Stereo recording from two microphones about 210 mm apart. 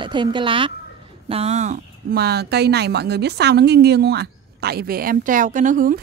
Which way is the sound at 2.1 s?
50° right (ahead or behind).